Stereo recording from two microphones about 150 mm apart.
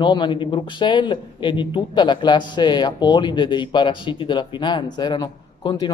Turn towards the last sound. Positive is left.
turn(degrees=30)  # may be behind; listen again after turning